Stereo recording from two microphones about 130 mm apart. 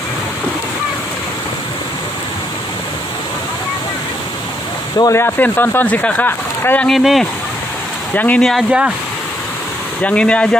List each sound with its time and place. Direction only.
4.9 s speech: 25° left (ahead or behind)
6.9 s speech: centre (ahead or behind)
8.1 s speech: 15° left (ahead or behind)
8.6 s speech: 5° right (ahead or behind)
10.0 s speech: 10° left (ahead or behind)